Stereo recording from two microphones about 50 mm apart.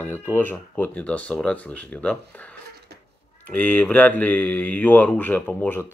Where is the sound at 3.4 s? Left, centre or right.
Left.